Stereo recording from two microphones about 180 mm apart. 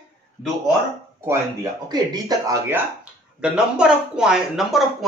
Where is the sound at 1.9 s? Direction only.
20° right (ahead or behind).